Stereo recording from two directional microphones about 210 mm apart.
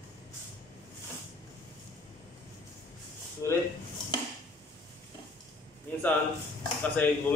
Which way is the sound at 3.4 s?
15° left (ahead or behind).